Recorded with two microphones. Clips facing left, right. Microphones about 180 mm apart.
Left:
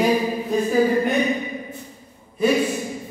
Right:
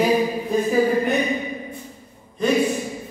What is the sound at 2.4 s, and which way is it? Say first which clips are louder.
Speech: left 1 dB; 10° left (ahead or behind).